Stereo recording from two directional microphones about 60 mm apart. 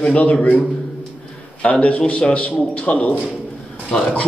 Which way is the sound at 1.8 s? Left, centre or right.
Left.